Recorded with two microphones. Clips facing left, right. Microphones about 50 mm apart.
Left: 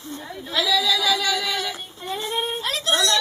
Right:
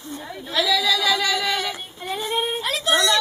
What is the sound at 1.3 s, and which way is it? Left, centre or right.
Synthetic singing, centre.